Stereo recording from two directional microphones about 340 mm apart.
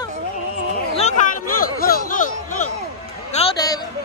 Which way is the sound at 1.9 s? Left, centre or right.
Left.